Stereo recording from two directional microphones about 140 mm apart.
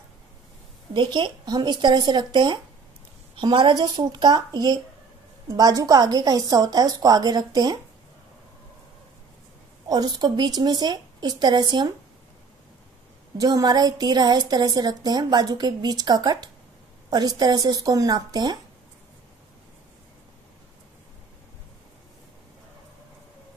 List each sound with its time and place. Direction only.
0.9 s a woman's voice: 35° right (ahead or behind)
9.8 s a woman's voice: 30° right (ahead or behind)
13.4 s a woman's voice: 25° right (ahead or behind)